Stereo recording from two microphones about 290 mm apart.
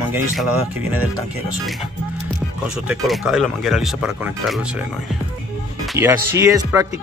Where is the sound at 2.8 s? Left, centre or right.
Centre.